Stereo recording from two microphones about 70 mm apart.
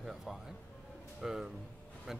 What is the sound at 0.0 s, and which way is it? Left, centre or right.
Music, centre.